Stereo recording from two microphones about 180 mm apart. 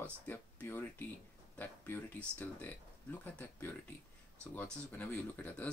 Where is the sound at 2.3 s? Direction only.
10° left (ahead or behind).